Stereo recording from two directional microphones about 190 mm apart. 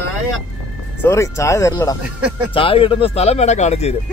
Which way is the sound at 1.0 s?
15° left (ahead or behind).